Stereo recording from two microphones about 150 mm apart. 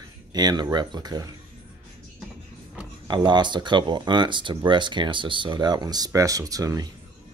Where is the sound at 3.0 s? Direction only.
30° right (ahead or behind).